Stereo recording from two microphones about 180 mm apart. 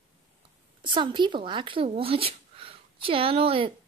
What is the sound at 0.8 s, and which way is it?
Speech, 25° right (ahead or behind).